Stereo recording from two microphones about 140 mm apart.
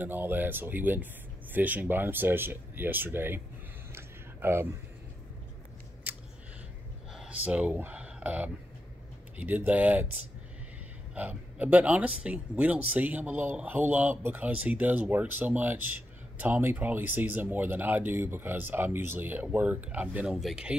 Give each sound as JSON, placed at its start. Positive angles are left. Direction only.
{"t": 0.0, "sound": "speech", "side_deg": -15}
{"t": 3.9, "sound": "a sound", "side_deg": -15}
{"t": 7.2, "sound": "speech", "side_deg": -10}
{"t": 11.1, "sound": "speech", "side_deg": -10}